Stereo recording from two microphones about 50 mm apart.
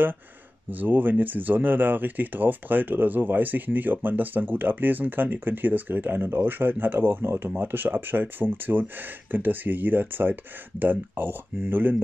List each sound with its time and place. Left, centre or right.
0.7 s speech: right